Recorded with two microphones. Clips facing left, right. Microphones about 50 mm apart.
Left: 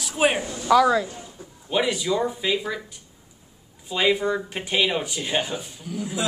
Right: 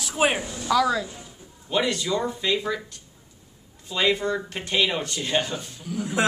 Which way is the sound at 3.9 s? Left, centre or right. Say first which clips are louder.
Left 2 dB; centre.